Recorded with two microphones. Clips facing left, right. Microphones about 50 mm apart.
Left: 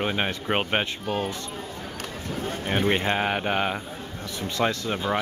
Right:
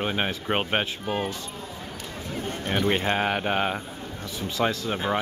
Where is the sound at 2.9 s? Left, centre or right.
Centre.